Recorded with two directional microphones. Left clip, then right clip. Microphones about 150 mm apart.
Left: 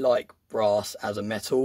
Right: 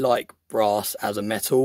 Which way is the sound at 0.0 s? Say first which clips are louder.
Right 2 dB; 45° right (ahead or behind).